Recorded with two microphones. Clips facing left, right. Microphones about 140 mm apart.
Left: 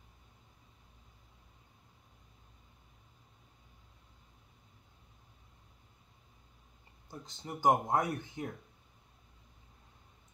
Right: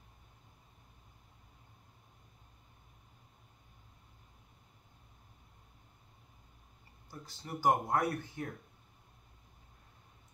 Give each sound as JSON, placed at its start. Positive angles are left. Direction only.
{"t": 7.1, "sound": "speech", "side_deg": 20}